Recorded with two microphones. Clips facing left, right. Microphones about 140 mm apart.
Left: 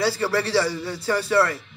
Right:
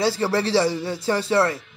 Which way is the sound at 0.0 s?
25° right (ahead or behind).